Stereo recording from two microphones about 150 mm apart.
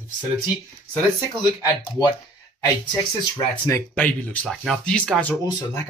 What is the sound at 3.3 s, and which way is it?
Speech, 10° left (ahead or behind).